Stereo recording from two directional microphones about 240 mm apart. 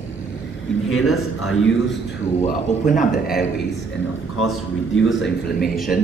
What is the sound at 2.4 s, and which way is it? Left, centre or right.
A man's voice, left.